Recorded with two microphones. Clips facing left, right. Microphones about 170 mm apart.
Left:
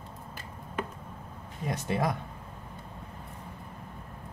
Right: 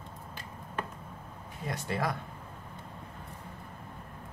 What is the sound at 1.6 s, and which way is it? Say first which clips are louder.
Speech: left 3 dB; 20° left (ahead or behind).